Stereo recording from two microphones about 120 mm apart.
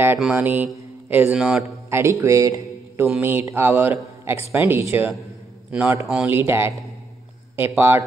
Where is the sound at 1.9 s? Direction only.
25° right (ahead or behind).